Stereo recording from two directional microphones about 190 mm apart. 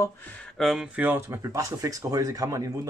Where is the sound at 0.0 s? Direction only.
5° left (ahead or behind).